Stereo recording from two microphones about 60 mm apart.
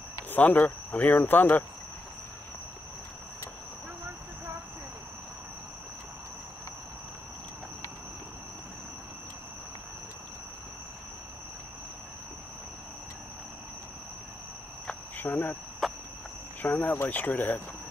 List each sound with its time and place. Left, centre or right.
0.3 s speech: left
15.1 s cricket: left
15.8 s cricket: centre
16.6 s cricket: left
16.9 s speech: left